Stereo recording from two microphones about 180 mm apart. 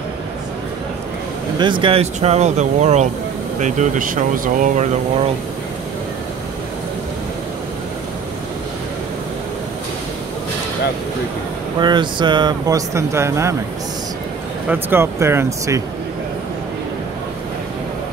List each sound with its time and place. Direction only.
1.6 s speech: 25° right (ahead or behind); by 4.8 s 45° right (ahead or behind)
11.8 s speech: 25° right (ahead or behind)
14.7 s speech: 10° right (ahead or behind)